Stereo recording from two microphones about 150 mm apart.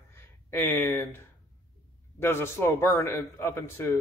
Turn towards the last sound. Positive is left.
turn(degrees=15)  # may be behind; listen again after turning